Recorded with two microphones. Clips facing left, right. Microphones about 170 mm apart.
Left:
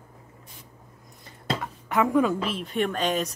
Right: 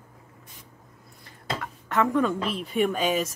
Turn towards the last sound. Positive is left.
turn(degrees=-5)  # may be behind; listen again after turning